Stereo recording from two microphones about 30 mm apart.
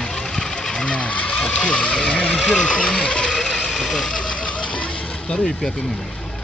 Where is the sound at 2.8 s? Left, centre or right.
Left.